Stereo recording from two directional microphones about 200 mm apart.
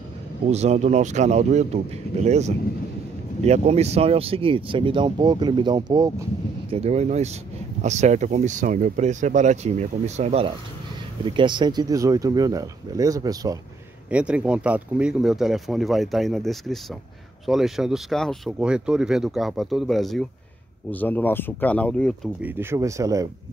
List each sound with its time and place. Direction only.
0.5 s speech: 35° right (ahead or behind); by 6.2 s 20° right (ahead or behind)
6.7 s speech: 30° right (ahead or behind)
14.1 s speech: 5° right (ahead or behind)
22.4 s speech: 10° right (ahead or behind)